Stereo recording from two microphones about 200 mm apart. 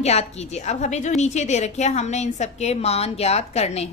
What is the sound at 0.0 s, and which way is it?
A woman's voice, 30° left (ahead or behind).